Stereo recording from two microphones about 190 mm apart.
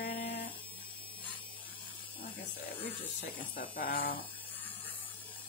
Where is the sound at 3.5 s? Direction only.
50° left (ahead or behind).